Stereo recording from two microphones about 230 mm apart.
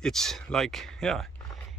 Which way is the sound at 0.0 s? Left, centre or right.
Centre.